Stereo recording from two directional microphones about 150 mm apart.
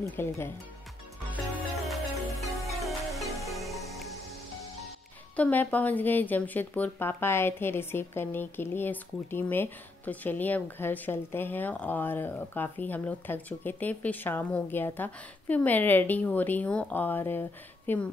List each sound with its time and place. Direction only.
0.1 s speech: 15° left (ahead or behind)
2.4 s music: centre (ahead or behind)
5.3 s speech: 10° left (ahead or behind)